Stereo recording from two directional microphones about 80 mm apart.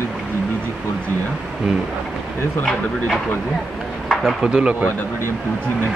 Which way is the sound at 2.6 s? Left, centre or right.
Centre.